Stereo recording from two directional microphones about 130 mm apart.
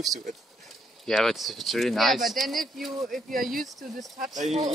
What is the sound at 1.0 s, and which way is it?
Speech, centre (ahead or behind).